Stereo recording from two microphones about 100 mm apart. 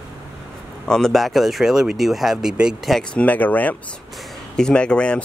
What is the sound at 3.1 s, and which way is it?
Speech, 15° left (ahead or behind).